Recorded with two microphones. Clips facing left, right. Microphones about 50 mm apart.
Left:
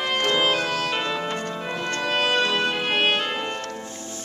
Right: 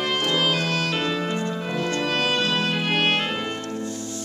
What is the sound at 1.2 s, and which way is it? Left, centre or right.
Music, left.